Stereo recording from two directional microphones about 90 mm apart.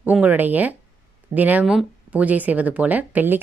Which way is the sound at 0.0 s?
20° right (ahead or behind).